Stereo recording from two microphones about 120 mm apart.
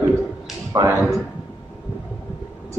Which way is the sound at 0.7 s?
30° right (ahead or behind).